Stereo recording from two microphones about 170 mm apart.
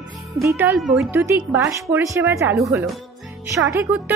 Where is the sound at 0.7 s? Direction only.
5° right (ahead or behind).